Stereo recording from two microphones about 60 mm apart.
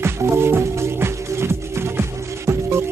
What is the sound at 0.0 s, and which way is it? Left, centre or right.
Music, right.